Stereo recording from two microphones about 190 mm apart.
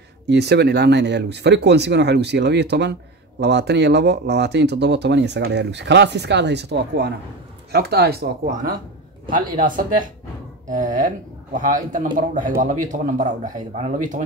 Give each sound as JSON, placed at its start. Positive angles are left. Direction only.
{"t": 0.3, "sound": "speech", "side_deg": -60}
{"t": 9.3, "sound": "a man's voice", "side_deg": -45}
{"t": 11.5, "sound": "a man's voice", "side_deg": -45}